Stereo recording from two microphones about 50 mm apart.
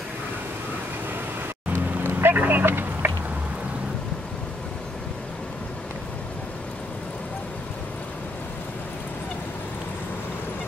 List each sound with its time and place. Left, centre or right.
1.7 s vehicle: right
2.3 s speech: right
2.6 s a sound: right